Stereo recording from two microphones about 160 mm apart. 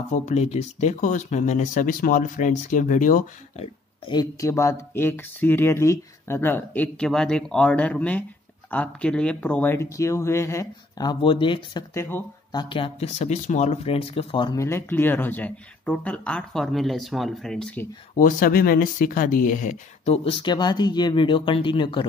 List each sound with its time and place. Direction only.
0.1 s speech: 45° left (ahead or behind)
4.1 s speech: 20° left (ahead or behind)
11.9 s speech: 15° left (ahead or behind)
12.6 s speech: 35° left (ahead or behind); by 17.8 s 5° left (ahead or behind)
18.1 s speech: 60° left (ahead or behind)
20.2 s speech: 30° left (ahead or behind)